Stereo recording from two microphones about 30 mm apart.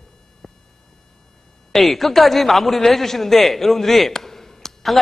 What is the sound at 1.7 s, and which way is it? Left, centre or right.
A man's voice, centre.